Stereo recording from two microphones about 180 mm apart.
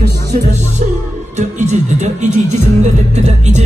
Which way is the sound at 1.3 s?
40° right (ahead or behind).